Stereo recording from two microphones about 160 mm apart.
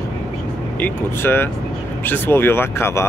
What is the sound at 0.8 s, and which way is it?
Speech, 15° left (ahead or behind).